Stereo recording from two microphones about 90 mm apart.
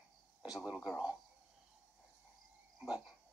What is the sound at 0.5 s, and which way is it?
Speech, 5° right (ahead or behind).